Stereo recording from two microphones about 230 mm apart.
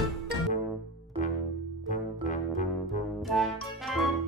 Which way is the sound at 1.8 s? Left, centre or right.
Left.